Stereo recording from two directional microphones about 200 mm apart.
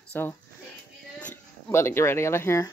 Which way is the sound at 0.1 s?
10° left (ahead or behind).